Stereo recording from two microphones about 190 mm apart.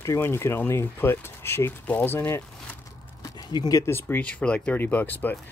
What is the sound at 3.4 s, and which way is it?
Speech, 20° left (ahead or behind).